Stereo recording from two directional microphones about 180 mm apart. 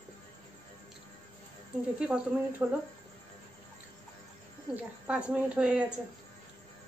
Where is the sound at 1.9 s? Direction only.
5° right (ahead or behind).